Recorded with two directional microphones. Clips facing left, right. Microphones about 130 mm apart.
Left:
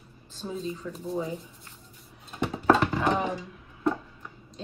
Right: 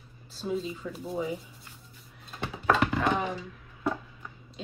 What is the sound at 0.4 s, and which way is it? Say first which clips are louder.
Speech: right 2 dB; 5° right (ahead or behind).